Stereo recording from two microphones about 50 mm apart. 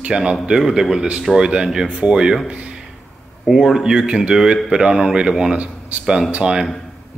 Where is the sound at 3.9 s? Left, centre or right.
Centre.